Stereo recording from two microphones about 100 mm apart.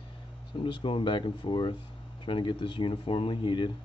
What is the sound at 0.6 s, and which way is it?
Speech, 60° left (ahead or behind).